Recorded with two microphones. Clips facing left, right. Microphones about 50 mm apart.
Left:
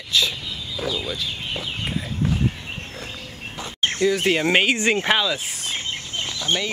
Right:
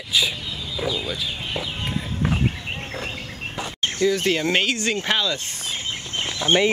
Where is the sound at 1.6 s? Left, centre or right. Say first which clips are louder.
Even; centre.